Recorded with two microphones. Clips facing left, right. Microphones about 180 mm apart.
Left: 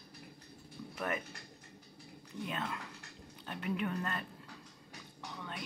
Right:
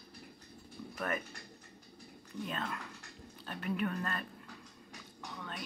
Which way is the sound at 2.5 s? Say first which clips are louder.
Left 1 dB; 15° left (ahead or behind).